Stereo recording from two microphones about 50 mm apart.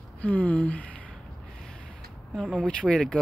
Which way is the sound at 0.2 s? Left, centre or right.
Left.